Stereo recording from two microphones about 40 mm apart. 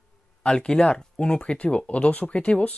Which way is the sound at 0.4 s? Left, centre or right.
Left.